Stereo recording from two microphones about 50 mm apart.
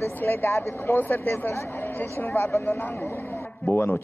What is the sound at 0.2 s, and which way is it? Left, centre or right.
A woman's voice, left.